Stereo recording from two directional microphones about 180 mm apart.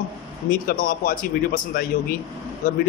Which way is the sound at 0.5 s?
50° left (ahead or behind).